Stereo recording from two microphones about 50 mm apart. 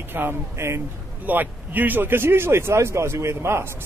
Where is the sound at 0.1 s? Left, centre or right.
Right.